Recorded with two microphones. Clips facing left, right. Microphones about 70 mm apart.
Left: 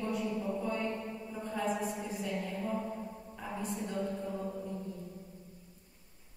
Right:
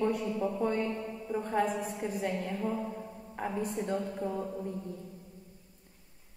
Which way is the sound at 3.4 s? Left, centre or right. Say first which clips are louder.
Right 5 dB; right.